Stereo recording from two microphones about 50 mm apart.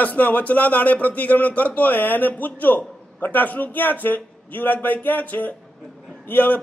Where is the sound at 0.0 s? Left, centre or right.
Left.